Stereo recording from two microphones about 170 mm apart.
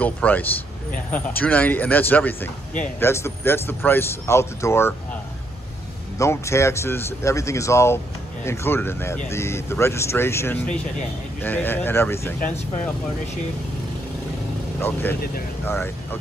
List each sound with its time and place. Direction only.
0.0 s speech: 10° left (ahead or behind)
6.1 s speech: 15° left (ahead or behind)
14.8 s speech: 10° left (ahead or behind)